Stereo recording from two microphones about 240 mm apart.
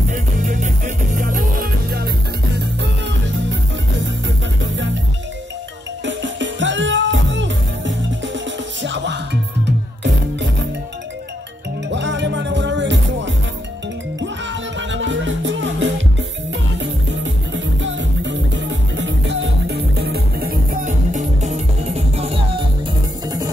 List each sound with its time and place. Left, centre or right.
0.1 s music: right
6.0 s music: right
11.9 s music: right